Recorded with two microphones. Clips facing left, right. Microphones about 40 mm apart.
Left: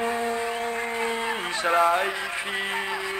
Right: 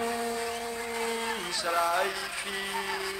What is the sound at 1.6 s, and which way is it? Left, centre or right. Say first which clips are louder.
Speech: left 6 dB; left.